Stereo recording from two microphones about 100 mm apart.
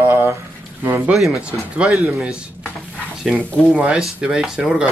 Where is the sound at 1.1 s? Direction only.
Centre (ahead or behind).